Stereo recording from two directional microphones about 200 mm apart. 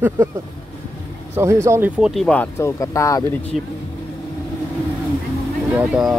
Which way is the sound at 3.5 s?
Centre (ahead or behind).